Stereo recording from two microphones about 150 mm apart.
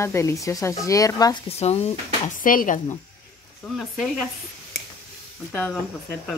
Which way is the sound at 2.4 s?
65° left (ahead or behind).